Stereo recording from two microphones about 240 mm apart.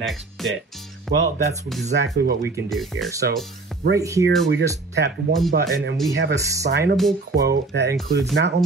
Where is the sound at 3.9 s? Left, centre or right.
Centre.